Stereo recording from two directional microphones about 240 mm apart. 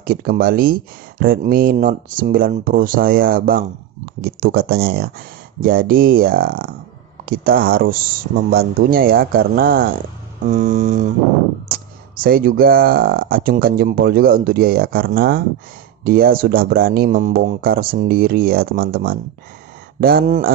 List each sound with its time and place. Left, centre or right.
0.0 s speech: right
12.2 s speech: right